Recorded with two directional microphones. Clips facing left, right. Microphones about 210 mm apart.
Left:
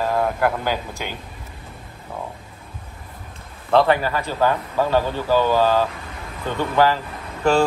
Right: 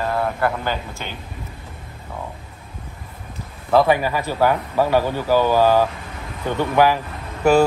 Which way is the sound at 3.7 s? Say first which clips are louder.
Right 1 dB; 10° right (ahead or behind).